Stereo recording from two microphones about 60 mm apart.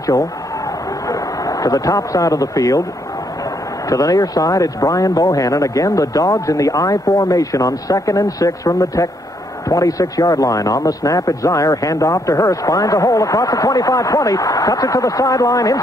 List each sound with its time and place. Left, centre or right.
0.0 s speech: left
3.9 s a man's voice: left